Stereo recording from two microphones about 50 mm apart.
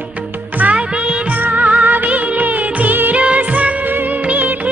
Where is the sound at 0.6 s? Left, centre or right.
Right.